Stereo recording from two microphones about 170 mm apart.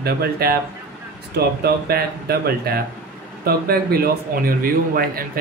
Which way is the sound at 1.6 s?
65° right (ahead or behind).